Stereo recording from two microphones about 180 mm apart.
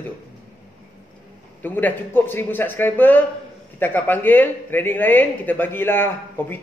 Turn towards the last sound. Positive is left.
turn(degrees=10)  # may be behind; listen again after turning